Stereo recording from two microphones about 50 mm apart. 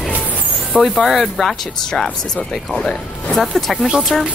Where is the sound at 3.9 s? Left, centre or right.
Centre.